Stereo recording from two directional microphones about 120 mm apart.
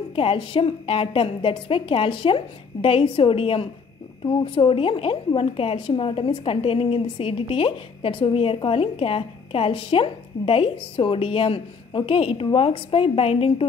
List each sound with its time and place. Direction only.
0.1 s a woman's voice: 50° left (ahead or behind)